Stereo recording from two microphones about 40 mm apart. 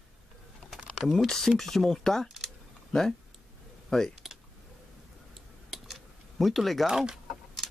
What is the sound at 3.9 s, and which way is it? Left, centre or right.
Speech, centre.